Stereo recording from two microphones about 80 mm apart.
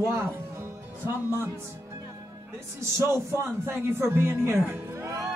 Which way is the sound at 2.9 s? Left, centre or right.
Right.